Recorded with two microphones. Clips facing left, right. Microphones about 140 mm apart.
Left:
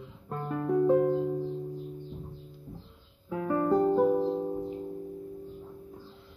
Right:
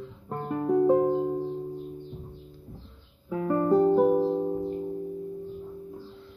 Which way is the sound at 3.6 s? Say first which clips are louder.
Right 3 dB; 15° right (ahead or behind).